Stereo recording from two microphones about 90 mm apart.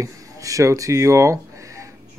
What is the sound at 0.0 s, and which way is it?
Speech, 35° right (ahead or behind).